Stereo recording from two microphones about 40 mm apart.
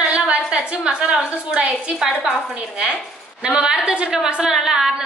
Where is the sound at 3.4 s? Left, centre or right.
Right.